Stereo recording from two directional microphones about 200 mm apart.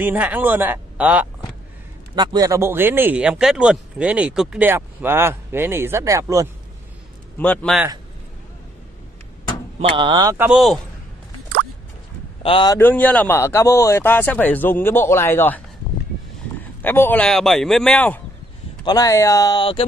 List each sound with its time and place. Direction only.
0.0 s speech: 10° right (ahead or behind)
2.1 s speech: 20° right (ahead or behind)
7.3 s a man's voice: 5° left (ahead or behind)
9.8 s speech: 25° right (ahead or behind)
10.3 s a man's voice: 10° right (ahead or behind)
12.4 s speech: 25° left (ahead or behind)
12.7 s speech: 10° left (ahead or behind)
16.8 s a man's voice: 10° left (ahead or behind)
18.9 s speech: 15° left (ahead or behind)